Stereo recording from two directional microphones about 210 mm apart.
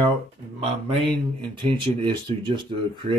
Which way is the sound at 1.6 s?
20° right (ahead or behind).